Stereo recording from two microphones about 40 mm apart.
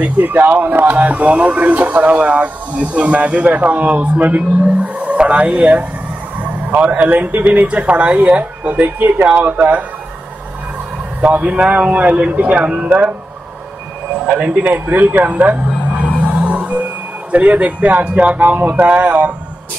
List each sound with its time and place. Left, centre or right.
0.0 s speech: right
3.4 s speech: right
5.1 s speech: right
5.4 s speech: right
6.3 s vehicle: right
7.3 s speech: right
11.1 s speech: right
14.4 s speech: right
15.6 s music: right
17.3 s speech: right